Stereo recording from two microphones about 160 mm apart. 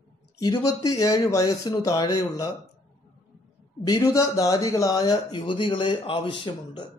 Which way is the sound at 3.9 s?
20° left (ahead or behind).